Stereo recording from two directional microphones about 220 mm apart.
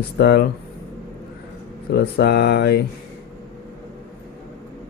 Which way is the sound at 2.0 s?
50° left (ahead or behind).